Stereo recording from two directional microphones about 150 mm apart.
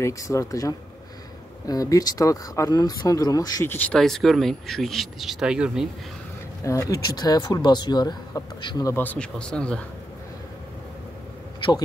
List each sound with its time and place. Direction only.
0.0 s speech: 20° left (ahead or behind)
3.7 s speech: 5° left (ahead or behind)
6.6 s speech: 20° left (ahead or behind)
8.9 s speech: 10° left (ahead or behind)